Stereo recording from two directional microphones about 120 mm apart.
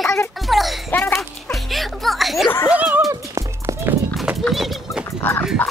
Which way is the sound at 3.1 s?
25° right (ahead or behind).